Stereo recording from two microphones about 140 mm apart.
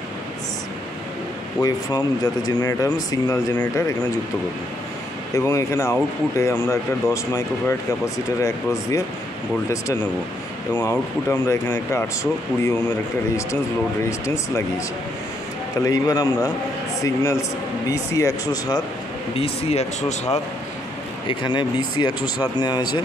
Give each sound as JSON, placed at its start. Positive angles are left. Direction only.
{"t": 1.6, "sound": "speech", "side_deg": 25}
{"t": 5.3, "sound": "speech", "side_deg": 20}
{"t": 10.8, "sound": "speech", "side_deg": 25}
{"t": 14.0, "sound": "speech", "side_deg": 20}
{"t": 15.8, "sound": "speech", "side_deg": 25}
{"t": 19.3, "sound": "speech", "side_deg": 45}
{"t": 21.3, "sound": "speech", "side_deg": 35}